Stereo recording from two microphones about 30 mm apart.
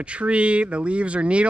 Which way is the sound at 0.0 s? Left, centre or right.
Right.